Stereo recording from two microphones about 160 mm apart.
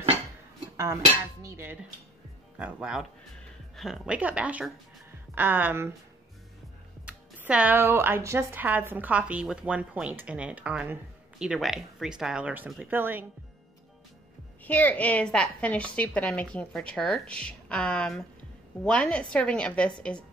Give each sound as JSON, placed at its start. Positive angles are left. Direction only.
{"t": 1.4, "sound": "speech", "side_deg": -15}
{"t": 2.6, "sound": "speech", "side_deg": -5}
{"t": 7.1, "sound": "speech", "side_deg": -10}
{"t": 14.6, "sound": "a woman's voice", "side_deg": 10}